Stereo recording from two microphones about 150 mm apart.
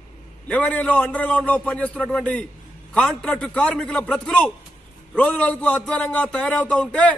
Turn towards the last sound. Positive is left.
turn(degrees=5)  # may be behind; listen again after turning